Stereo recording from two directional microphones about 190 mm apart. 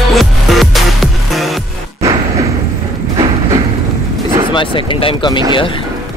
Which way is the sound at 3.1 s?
20° right (ahead or behind).